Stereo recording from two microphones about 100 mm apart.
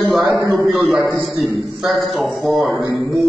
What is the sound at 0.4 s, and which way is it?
Speech, 30° right (ahead or behind).